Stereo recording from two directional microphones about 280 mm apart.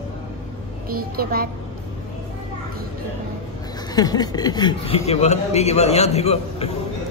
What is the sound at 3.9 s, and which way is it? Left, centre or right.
A man's voice, centre.